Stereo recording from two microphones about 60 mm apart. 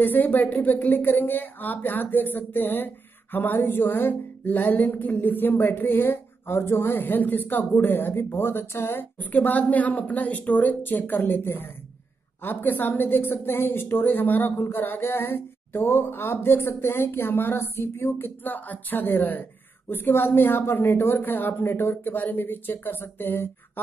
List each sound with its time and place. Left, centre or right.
0.0 s speech: left
9.3 s speech: left